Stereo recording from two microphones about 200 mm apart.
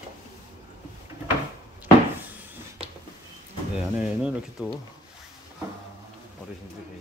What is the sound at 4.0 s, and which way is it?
Speech, 5° right (ahead or behind).